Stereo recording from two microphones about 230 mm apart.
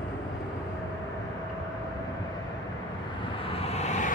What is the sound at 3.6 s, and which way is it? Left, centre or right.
Vehicle, left.